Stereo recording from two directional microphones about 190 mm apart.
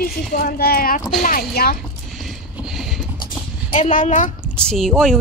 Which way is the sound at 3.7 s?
40° left (ahead or behind).